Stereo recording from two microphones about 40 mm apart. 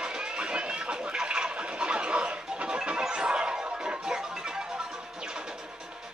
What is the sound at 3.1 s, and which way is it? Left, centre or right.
Music, right.